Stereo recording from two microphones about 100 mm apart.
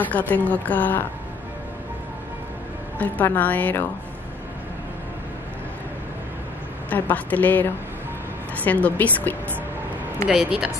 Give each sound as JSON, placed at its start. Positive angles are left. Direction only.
{"t": 0.0, "sound": "a woman's voice", "side_deg": 15}
{"t": 3.0, "sound": "a woman's voice", "side_deg": 15}
{"t": 6.9, "sound": "a woman's voice", "side_deg": 15}
{"t": 10.2, "sound": "speech", "side_deg": -10}